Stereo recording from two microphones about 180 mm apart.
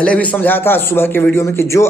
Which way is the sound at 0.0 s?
5° left (ahead or behind).